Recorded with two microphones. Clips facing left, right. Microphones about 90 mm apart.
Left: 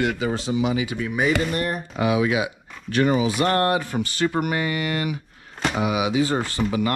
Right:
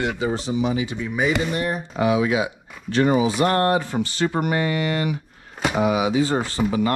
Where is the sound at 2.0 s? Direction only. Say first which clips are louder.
Right 1 dB; 30° right (ahead or behind).